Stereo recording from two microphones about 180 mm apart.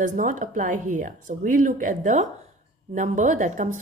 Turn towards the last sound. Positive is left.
turn(degrees=-45)  # may be behind; listen again after turning